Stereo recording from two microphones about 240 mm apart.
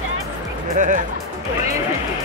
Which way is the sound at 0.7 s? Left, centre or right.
Right.